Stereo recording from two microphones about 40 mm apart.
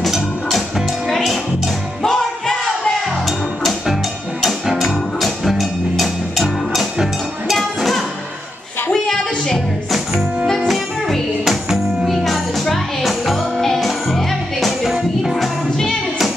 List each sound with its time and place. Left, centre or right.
0.1 s music: centre
2.0 s a sound: centre
3.8 s music: centre
7.5 s music: centre
8.9 s a sound: centre
10.7 s music: centre
14.8 s music: centre